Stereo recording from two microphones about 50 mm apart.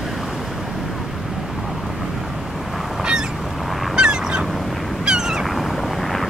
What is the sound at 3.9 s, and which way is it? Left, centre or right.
Goose, centre.